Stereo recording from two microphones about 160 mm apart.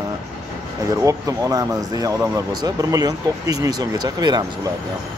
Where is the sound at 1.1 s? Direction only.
20° right (ahead or behind).